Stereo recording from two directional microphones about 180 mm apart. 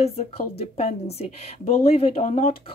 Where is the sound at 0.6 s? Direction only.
35° left (ahead or behind).